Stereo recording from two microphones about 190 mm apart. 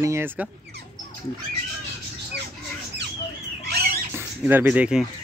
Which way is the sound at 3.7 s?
55° right (ahead or behind).